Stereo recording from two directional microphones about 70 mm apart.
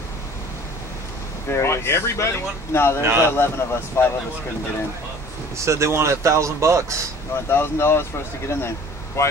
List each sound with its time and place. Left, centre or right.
1.5 s speech: left
3.0 s speech: right
3.3 s speech: left
5.7 s speech: right
7.4 s speech: left